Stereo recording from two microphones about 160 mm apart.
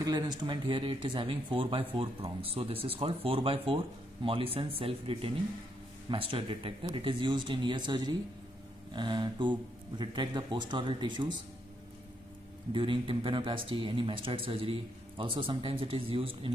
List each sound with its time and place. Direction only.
0.0 s speech: 25° right (ahead or behind)
12.7 s speech: 35° right (ahead or behind)